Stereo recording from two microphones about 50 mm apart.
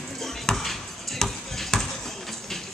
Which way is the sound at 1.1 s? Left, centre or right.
Centre.